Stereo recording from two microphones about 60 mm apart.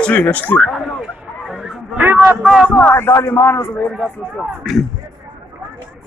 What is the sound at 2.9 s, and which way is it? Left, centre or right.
Speech, left.